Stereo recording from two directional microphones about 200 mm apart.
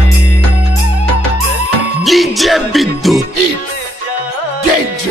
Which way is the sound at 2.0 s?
Centre (ahead or behind).